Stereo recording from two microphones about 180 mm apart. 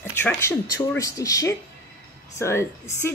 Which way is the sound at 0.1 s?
10° left (ahead or behind).